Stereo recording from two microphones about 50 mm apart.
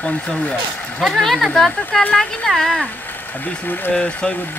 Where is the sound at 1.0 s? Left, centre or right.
Centre.